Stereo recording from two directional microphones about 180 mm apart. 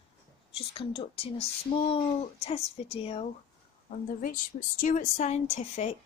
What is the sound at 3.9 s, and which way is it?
A woman's voice, 45° left (ahead or behind).